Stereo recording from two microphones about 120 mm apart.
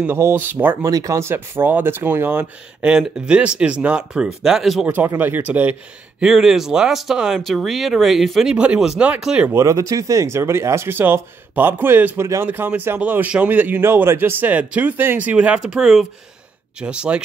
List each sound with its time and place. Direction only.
0.0 s speech: 20° right (ahead or behind)
0.8 s speech: 30° right (ahead or behind); by 4.9 s 5° right (ahead or behind)
4.9 s speech: 15° right (ahead or behind)
9.5 s speech: 25° right (ahead or behind); by 17.2 s 10° right (ahead or behind)